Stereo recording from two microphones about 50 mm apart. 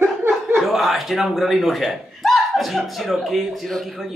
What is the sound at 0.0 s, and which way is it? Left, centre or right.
Chuckle, right.